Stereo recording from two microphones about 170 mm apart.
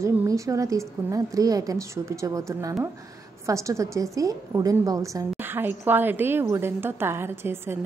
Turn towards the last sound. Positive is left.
turn(degrees=-15)  # may be behind; listen again after turning